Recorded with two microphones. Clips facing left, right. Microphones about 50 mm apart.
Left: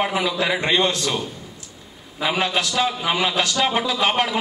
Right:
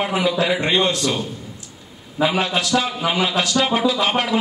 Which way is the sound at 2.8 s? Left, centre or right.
Centre.